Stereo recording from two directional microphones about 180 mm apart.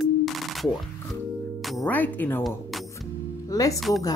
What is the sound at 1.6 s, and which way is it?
Speech, 5° left (ahead or behind).